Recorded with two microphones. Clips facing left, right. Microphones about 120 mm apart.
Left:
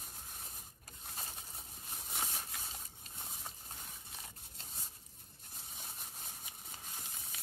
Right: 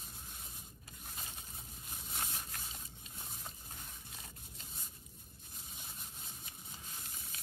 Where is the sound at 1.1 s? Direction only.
30° left (ahead or behind).